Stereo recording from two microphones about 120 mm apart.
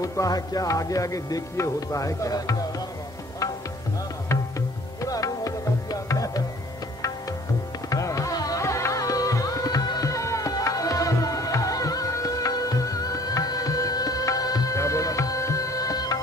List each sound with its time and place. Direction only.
0.0 s music: 30° left (ahead or behind)
4.3 s tabla: 25° left (ahead or behind)
7.9 s music: 25° left (ahead or behind)